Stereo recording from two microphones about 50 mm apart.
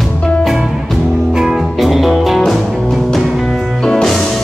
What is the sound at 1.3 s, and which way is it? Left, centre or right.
Music, centre.